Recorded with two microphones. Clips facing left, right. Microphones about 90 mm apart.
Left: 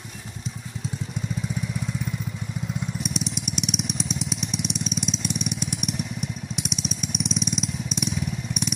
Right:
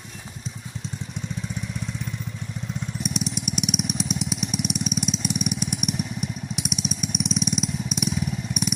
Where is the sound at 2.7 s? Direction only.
Centre (ahead or behind).